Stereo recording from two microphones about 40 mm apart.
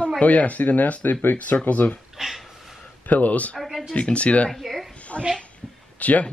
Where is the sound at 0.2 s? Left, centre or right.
Left.